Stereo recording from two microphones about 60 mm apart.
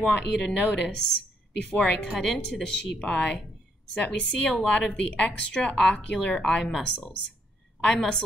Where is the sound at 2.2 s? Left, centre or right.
Centre.